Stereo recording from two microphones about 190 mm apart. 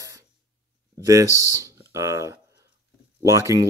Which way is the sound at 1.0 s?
15° right (ahead or behind).